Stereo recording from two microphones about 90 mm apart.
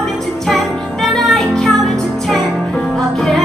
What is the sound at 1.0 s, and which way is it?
Music, centre (ahead or behind).